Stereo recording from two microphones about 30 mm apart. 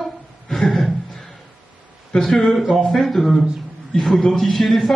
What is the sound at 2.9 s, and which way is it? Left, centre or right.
A man's voice, centre.